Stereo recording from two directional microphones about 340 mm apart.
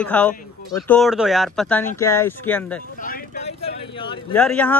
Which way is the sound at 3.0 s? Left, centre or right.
Left.